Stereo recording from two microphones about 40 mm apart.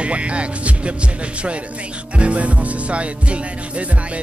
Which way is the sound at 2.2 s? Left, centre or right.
Right.